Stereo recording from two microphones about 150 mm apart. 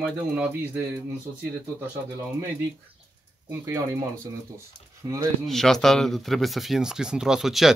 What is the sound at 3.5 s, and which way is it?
Speech, 20° right (ahead or behind).